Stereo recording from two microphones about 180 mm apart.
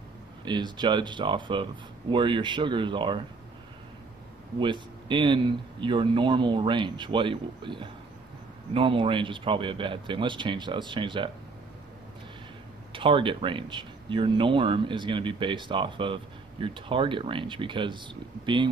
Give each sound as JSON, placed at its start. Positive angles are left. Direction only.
{"t": 0.5, "sound": "a man's voice", "side_deg": -25}
{"t": 4.6, "sound": "a man's voice", "side_deg": -25}
{"t": 12.9, "sound": "a man's voice", "side_deg": -30}